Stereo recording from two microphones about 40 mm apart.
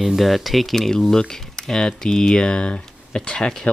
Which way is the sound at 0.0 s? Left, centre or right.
Centre.